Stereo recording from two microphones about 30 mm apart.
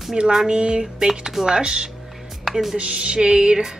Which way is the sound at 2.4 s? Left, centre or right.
Centre.